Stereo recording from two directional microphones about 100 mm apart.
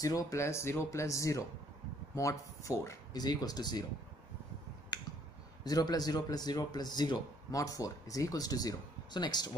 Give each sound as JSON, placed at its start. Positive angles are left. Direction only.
{"t": 0.0, "sound": "a man's voice", "side_deg": 35}
{"t": 5.6, "sound": "a man's voice", "side_deg": 40}